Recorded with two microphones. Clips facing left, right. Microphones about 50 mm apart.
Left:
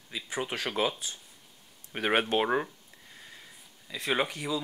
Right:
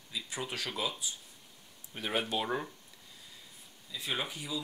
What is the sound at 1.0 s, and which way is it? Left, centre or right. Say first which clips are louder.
Speech: left 1 dB; left.